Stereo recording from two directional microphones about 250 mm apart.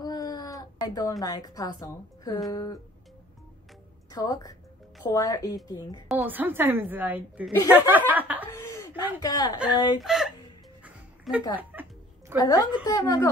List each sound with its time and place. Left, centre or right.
0.0 s a sound: centre
1.2 s a woman's voice: centre
4.1 s a woman's voice: centre
6.0 s speech: centre
7.7 s chuckle: centre
8.5 s chuckle: centre
9.2 s a woman's voice: centre
10.0 s speech: centre
10.8 s music: centre
12.4 s a woman's voice: centre